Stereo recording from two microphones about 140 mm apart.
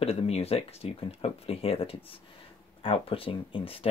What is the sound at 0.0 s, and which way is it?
Speech, 45° left (ahead or behind).